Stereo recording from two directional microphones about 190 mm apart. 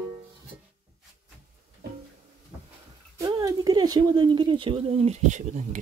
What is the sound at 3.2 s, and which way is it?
Speech, 20° right (ahead or behind).